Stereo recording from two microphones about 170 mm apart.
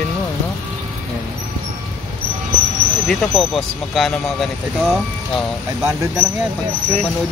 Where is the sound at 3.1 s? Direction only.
Centre (ahead or behind).